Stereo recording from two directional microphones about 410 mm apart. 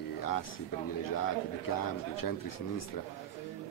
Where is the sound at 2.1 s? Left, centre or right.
Left.